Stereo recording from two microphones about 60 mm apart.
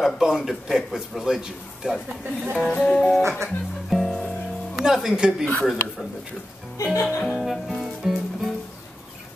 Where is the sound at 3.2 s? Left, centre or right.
Right.